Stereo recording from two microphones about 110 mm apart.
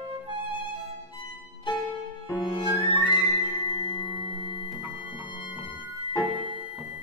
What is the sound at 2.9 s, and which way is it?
Music, 55° left (ahead or behind).